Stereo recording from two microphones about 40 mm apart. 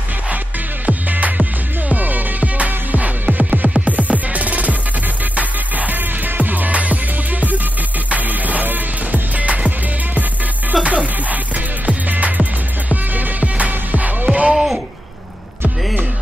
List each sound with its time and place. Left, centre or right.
0.8 s music: right
10.7 s music: right
14.5 s a sound: centre